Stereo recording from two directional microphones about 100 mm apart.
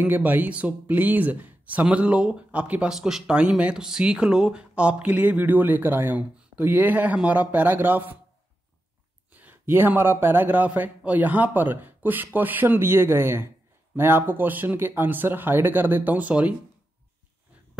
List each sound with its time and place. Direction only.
0.0 s speech: 15° right (ahead or behind)
9.3 s a man's voice: 15° right (ahead or behind)